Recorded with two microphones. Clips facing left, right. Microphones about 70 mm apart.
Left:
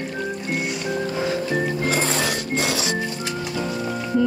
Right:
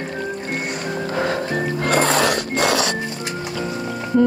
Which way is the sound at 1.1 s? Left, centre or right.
Right.